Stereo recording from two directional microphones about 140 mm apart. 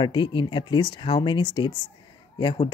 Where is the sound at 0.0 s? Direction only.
35° left (ahead or behind).